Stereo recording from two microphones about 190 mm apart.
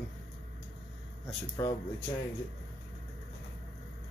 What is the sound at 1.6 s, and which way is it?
Speech, 15° left (ahead or behind).